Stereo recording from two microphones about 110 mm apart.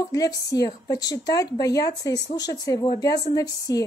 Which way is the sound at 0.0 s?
35° left (ahead or behind).